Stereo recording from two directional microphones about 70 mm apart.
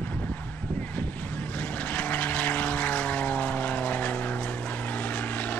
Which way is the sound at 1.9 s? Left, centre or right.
Left.